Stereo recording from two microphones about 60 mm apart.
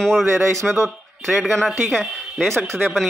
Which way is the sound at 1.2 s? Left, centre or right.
Centre.